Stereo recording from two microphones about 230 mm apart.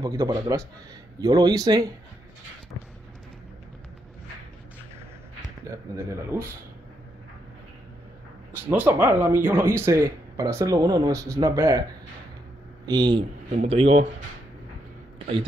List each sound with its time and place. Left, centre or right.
0.0 s speech: centre
5.7 s speech: centre
8.6 s speech: centre
13.5 s speech: right